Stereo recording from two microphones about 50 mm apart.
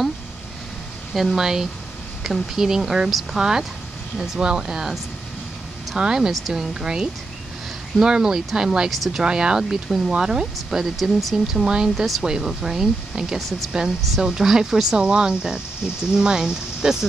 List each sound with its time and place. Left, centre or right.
1.1 s speech: centre
8.9 s speech: centre
9.2 s speech: centre
15.0 s speech: centre